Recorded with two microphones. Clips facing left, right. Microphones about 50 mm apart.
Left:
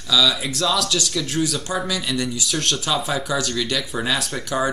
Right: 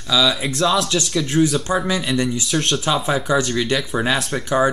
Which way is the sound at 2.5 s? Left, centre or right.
Centre.